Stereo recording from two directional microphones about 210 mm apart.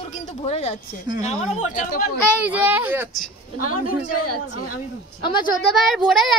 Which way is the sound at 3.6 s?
90° left.